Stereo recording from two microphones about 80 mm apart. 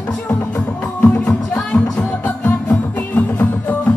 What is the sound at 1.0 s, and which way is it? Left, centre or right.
Music, centre.